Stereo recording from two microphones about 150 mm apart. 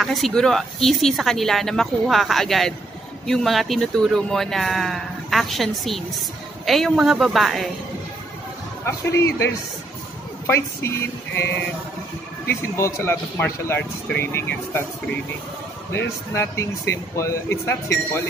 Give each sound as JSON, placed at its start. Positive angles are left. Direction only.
{"t": 0.0, "sound": "speech", "side_deg": 0}
{"t": 8.8, "sound": "speech", "side_deg": 20}
{"t": 15.9, "sound": "speech", "side_deg": 20}